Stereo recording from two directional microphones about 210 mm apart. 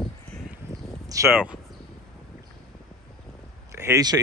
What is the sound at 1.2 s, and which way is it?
Speech, centre (ahead or behind).